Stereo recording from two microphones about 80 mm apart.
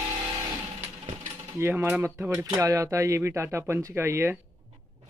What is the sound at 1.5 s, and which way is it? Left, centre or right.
Speech, right.